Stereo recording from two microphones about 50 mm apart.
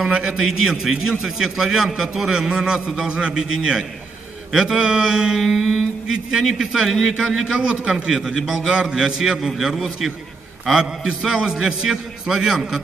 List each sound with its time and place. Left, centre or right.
0.0 s a man's voice: centre
0.4 s a man's voice: centre
5.4 s a man's voice: centre
8.4 s speech: centre
8.9 s a man's voice: centre